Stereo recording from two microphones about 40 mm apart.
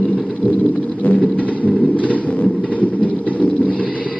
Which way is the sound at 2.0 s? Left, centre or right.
Left.